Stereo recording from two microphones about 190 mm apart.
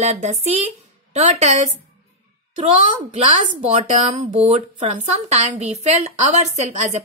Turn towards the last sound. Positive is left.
turn(degrees=-40)  # may be behind; listen again after turning